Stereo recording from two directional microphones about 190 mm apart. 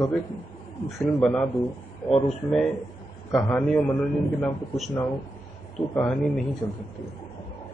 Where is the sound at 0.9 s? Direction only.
5° left (ahead or behind).